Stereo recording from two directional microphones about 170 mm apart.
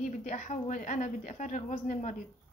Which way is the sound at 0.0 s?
45° left (ahead or behind).